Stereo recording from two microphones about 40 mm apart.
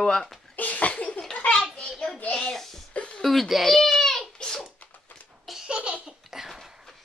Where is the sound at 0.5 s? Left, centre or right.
Left.